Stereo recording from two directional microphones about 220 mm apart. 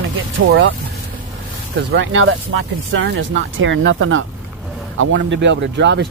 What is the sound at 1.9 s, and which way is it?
Speech, 60° right (ahead or behind).